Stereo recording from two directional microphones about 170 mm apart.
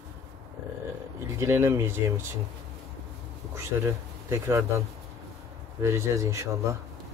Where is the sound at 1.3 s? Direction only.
15° right (ahead or behind).